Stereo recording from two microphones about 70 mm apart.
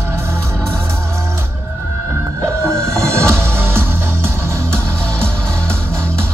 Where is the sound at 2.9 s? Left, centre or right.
Right.